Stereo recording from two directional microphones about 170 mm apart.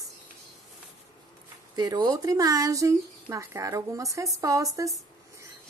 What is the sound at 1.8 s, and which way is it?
Speech, 25° right (ahead or behind).